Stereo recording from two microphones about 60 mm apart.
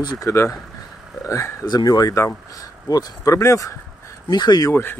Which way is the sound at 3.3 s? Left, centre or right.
Left.